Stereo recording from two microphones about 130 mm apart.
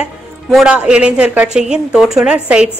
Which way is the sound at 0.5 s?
5° right (ahead or behind).